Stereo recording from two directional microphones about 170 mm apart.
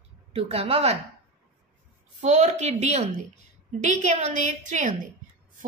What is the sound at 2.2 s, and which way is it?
A woman's voice, 45° right (ahead or behind).